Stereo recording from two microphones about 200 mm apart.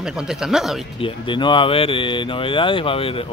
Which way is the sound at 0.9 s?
25° left (ahead or behind).